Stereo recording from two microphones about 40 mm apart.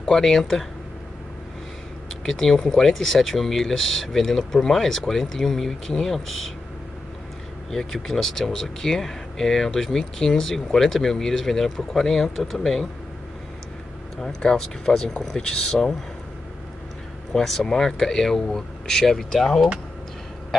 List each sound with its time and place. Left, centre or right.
0.1 s speech: centre
2.2 s speech: centre
7.7 s speech: centre
14.1 s speech: centre
17.3 s speech: left
17.6 s speech: centre